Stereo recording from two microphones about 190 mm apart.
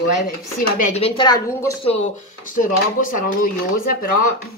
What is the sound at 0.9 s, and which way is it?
Speech, 25° left (ahead or behind).